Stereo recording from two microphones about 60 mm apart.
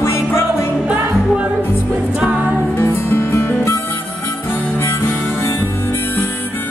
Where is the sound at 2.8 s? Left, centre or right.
Left.